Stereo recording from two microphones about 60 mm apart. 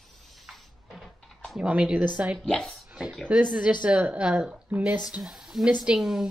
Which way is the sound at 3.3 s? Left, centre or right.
Centre.